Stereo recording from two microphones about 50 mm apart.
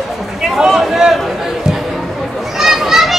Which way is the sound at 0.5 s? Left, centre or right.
Centre.